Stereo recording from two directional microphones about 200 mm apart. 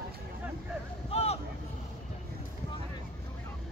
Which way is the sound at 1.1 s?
30° left (ahead or behind).